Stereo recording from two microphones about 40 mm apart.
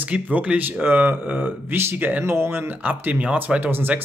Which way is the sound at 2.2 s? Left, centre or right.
Right.